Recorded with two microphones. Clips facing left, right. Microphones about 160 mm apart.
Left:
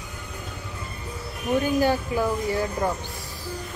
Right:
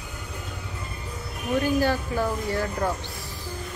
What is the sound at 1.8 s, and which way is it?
Speech, 15° left (ahead or behind).